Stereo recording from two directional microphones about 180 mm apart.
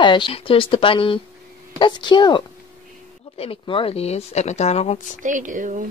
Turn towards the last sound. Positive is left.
turn(degrees=-45)  # may be behind; listen again after turning